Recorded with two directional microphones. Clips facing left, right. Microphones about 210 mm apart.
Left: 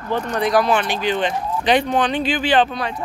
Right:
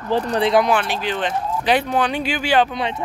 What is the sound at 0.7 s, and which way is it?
Speech, 5° right (ahead or behind).